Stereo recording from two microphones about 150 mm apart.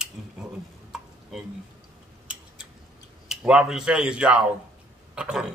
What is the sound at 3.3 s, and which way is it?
Speech, 5° right (ahead or behind).